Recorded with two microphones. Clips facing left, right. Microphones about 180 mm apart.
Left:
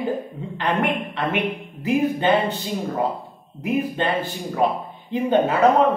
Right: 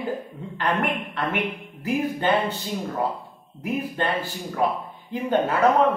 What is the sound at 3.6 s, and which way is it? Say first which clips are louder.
A man's voice: left 4 dB; 20° left (ahead or behind).